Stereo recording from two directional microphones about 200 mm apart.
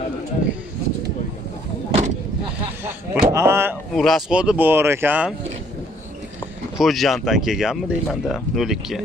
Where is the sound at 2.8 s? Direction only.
15° right (ahead or behind).